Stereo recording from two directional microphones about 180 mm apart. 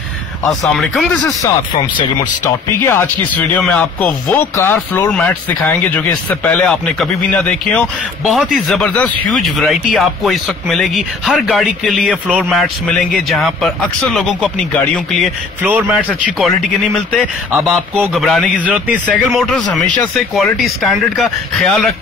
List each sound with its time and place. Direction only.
0.5 s speech: centre (ahead or behind)
1.2 s speech: 20° left (ahead or behind); by 15.2 s 5° left (ahead or behind)
15.6 s a man's voice: 5° right (ahead or behind)